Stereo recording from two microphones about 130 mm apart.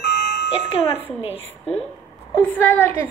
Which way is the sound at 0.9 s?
15° right (ahead or behind).